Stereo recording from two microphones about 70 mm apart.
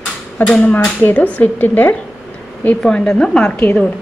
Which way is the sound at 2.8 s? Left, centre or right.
Centre.